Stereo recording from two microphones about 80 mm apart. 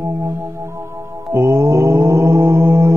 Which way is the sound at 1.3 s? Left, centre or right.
Right.